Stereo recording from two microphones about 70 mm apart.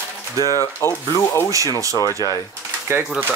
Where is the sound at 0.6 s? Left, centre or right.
Left.